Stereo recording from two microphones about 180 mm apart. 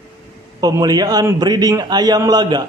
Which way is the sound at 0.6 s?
20° right (ahead or behind).